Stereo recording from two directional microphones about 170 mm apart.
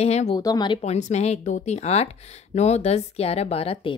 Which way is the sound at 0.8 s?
40° left (ahead or behind).